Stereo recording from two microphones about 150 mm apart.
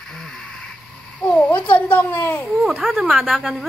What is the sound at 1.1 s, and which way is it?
A child's voice, 5° left (ahead or behind).